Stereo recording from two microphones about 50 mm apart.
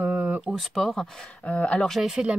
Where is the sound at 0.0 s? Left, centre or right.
Right.